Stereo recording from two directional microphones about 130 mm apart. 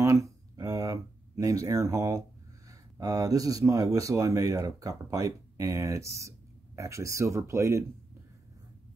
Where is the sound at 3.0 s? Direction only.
25° right (ahead or behind).